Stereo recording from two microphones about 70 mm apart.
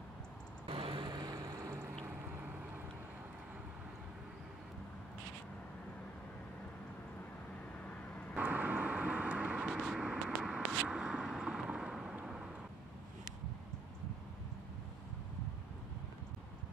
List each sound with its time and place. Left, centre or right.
1.0 s vehicle: right
1.7 s a sound: right
8.4 s vehicle: right
9.7 s vehicle: centre